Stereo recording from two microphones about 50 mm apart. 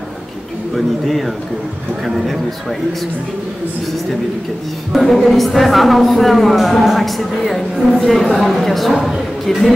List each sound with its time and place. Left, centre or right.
0.7 s speech: centre
4.9 s speech: centre